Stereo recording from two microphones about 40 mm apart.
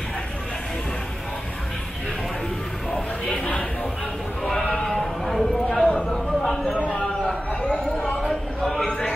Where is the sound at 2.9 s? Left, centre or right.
Left.